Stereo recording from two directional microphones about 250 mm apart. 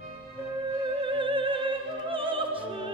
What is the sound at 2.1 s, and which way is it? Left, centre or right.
Music, centre.